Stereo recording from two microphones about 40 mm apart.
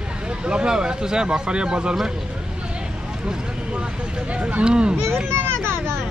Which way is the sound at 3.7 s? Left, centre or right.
Right.